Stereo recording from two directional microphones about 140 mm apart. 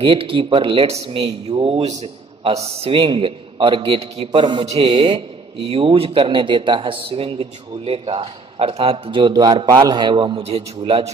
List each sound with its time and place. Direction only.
0.0 s speech: 40° right (ahead or behind)
2.8 s speech: 35° right (ahead or behind)